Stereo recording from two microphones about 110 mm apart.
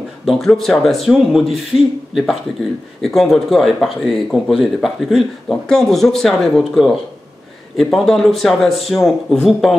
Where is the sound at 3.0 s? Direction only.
Centre (ahead or behind).